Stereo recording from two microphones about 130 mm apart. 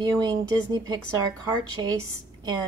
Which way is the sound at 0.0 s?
35° right (ahead or behind).